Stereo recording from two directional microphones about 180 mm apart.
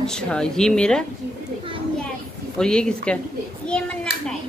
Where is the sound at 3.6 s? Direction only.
5° left (ahead or behind).